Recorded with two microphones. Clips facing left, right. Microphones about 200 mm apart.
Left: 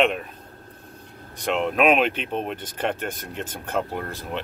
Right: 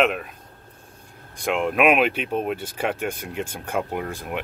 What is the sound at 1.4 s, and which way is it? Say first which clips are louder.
Speech: right 1 dB; 5° right (ahead or behind).